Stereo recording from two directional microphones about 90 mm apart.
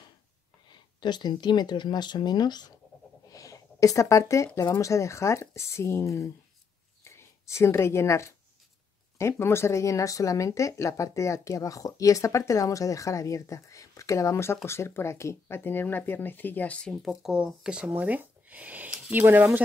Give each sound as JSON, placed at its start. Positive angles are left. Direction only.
{"t": 0.7, "sound": "speech", "side_deg": 55}
{"t": 3.3, "sound": "a sound", "side_deg": 40}
{"t": 4.7, "sound": "speech", "side_deg": 35}
{"t": 16.9, "sound": "speech", "side_deg": -5}